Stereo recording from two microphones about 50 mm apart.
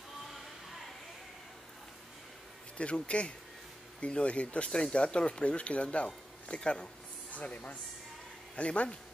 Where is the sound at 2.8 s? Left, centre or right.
Left.